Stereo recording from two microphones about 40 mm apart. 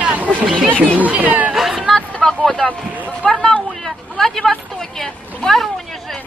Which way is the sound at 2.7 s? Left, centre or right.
Left.